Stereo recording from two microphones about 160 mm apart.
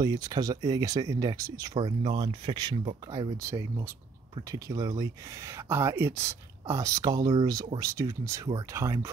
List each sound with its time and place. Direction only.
0.0 s speech: 25° right (ahead or behind)